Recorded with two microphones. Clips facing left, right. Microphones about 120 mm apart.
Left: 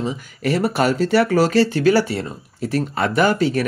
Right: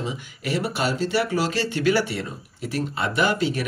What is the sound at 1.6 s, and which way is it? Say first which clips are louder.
Speech: left 4 dB; 40° left (ahead or behind).